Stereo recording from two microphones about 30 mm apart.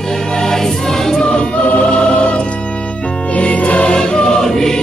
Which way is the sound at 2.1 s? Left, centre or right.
Left.